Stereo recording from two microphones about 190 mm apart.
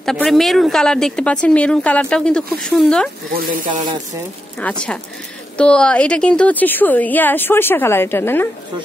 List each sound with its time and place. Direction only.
0.0 s speech: centre (ahead or behind)
3.3 s speech: 45° right (ahead or behind)
4.6 s a woman's voice: 5° left (ahead or behind)